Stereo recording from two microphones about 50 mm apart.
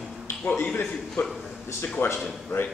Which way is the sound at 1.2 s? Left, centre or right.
Left.